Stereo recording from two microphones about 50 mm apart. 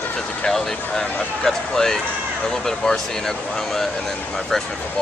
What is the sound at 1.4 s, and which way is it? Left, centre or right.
A man's voice, centre.